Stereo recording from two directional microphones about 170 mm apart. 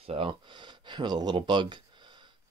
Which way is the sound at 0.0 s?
35° right (ahead or behind).